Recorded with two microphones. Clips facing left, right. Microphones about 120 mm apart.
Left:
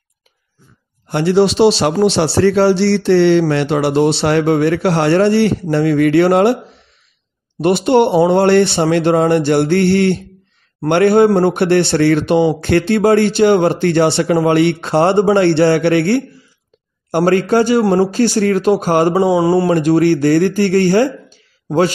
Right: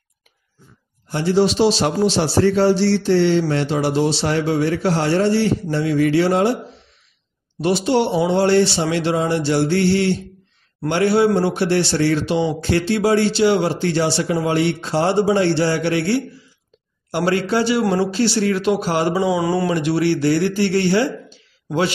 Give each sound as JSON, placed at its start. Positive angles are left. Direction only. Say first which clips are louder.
{"t": 1.0, "sound": "a man's voice", "louder": "left 4 dB", "side_deg": 65}
{"t": 7.6, "sound": "a man's voice", "louder": "left 6 dB", "side_deg": 55}
{"t": 19.2, "sound": "speech", "louder": "left 6 dB", "side_deg": 30}
{"t": 19.7, "sound": "speech", "louder": "left 6 dB", "side_deg": 45}